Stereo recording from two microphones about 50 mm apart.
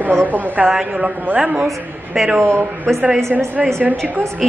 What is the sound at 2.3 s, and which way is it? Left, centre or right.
A woman's voice, right.